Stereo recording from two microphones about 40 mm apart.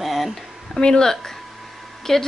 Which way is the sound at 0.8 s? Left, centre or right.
Centre.